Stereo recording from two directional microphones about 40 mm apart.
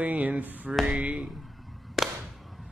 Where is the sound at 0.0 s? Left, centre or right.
Right.